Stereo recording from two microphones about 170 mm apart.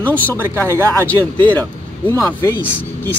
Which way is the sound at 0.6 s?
15° right (ahead or behind).